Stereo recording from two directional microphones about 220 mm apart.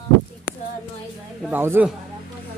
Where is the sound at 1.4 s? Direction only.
10° right (ahead or behind).